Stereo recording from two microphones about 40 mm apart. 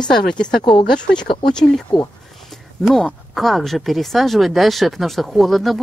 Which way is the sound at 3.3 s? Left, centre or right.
Centre.